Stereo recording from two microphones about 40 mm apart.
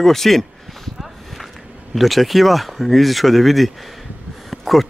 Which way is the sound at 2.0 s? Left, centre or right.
Centre.